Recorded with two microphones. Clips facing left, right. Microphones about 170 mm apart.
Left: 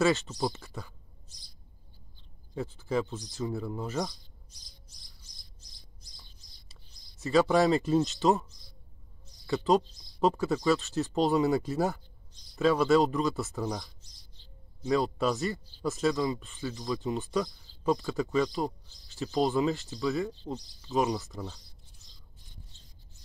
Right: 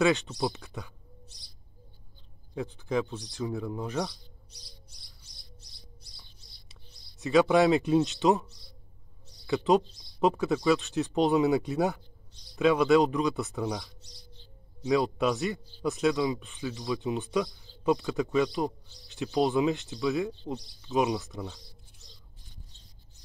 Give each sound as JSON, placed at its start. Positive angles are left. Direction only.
{"t": 0.0, "sound": "a man's voice", "side_deg": 0}
{"t": 2.5, "sound": "a man's voice", "side_deg": 0}
{"t": 5.0, "sound": "bird", "side_deg": -65}
{"t": 6.7, "sound": "speech", "side_deg": 0}
{"t": 9.5, "sound": "a man's voice", "side_deg": 0}